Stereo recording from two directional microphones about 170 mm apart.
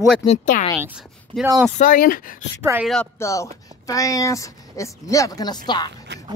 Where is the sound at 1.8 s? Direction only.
55° left (ahead or behind).